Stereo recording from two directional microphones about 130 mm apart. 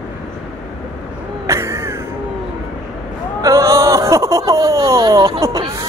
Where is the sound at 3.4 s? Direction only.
25° right (ahead or behind).